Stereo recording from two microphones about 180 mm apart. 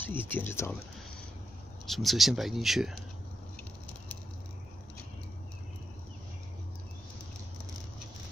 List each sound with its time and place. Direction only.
0.0 s speech: 10° left (ahead or behind)
1.9 s speech: centre (ahead or behind)